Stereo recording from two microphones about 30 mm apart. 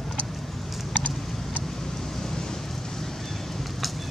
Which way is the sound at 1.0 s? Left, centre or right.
Left.